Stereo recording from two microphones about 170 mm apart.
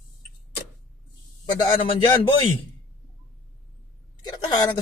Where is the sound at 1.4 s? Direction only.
25° left (ahead or behind).